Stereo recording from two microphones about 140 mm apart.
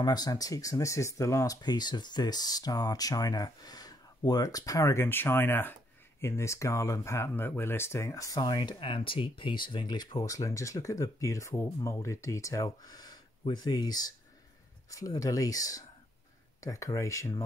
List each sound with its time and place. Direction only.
0.0 s speech: 30° left (ahead or behind)